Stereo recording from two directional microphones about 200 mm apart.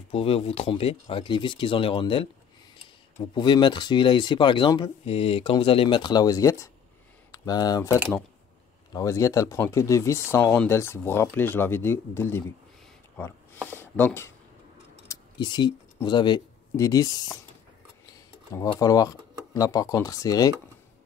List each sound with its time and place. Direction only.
0.1 s speech: 30° left (ahead or behind); by 14.3 s 10° left (ahead or behind)
15.0 s speech: 20° left (ahead or behind)